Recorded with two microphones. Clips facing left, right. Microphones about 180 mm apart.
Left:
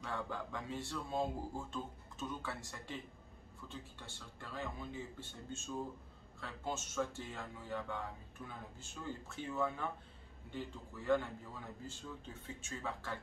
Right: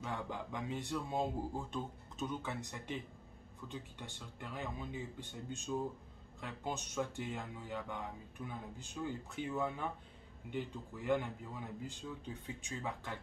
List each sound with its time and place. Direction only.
0.0 s speech: 20° right (ahead or behind)